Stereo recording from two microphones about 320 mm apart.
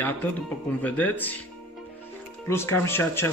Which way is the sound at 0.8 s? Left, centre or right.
Centre.